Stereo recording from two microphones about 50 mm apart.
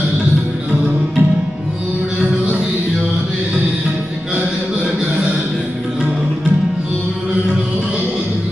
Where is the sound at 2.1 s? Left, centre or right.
Right.